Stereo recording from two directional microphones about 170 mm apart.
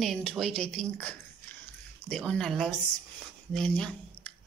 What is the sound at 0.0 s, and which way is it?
Speech, centre (ahead or behind).